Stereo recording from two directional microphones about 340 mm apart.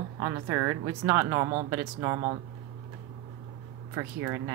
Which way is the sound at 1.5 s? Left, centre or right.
Right.